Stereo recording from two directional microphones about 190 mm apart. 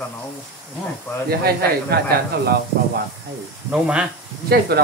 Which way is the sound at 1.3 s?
55° right (ahead or behind).